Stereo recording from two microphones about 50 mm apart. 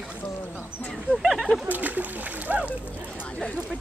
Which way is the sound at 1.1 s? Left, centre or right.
Centre.